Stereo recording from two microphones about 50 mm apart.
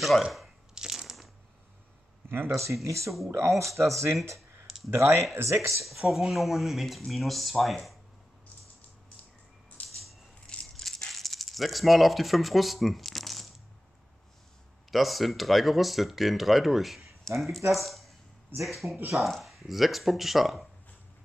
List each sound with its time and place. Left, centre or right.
0.0 s speech: centre
0.7 s crushing: centre
2.2 s speech: right
2.6 s speech: right
4.6 s a sound: centre
4.9 s speech: right
5.9 s speech: centre
9.8 s a sound: centre
10.4 s a sound: left
10.8 s rattle: centre
14.9 s speech: centre